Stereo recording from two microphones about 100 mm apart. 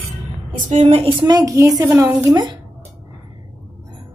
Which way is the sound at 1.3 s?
35° right (ahead or behind).